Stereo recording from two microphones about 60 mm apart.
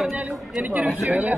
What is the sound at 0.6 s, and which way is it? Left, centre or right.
Speech, right.